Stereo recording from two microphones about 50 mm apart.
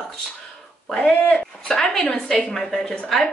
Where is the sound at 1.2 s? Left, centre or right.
Left.